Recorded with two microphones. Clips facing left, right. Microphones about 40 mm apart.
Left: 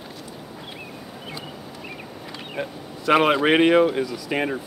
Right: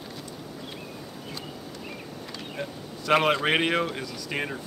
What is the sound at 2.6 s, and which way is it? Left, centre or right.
Speech, centre.